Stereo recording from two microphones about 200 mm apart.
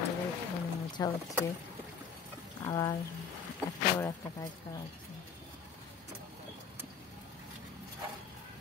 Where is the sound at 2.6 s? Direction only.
15° left (ahead or behind).